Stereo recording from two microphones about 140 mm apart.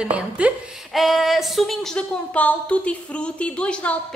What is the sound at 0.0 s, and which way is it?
A woman's voice, 10° right (ahead or behind).